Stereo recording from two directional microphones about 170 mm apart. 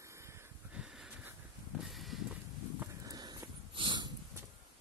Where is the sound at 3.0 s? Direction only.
25° right (ahead or behind).